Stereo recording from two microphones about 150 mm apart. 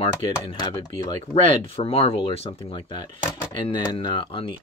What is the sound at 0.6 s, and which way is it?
Speech, 30° left (ahead or behind).